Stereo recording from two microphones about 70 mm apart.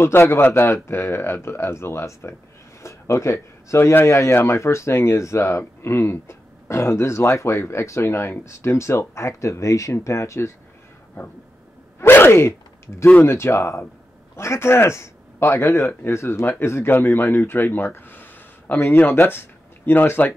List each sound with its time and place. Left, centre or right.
0.0 s speech: left
12.1 s a man's voice: left